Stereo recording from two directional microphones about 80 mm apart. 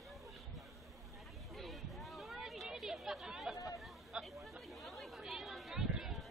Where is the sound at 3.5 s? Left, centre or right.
Left.